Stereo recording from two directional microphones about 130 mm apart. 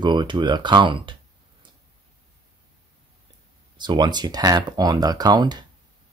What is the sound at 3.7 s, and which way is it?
Speech, 35° right (ahead or behind).